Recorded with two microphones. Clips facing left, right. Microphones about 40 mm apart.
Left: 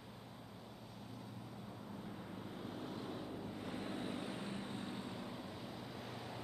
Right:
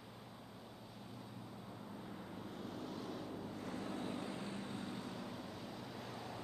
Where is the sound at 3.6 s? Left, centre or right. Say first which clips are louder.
Even; left; by 6.3 s centre.